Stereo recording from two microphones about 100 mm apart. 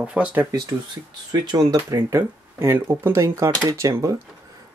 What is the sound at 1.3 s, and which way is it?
Speech, 40° right (ahead or behind).